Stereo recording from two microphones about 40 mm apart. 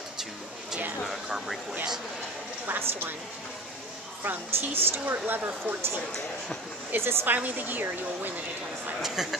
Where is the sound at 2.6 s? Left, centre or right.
Right.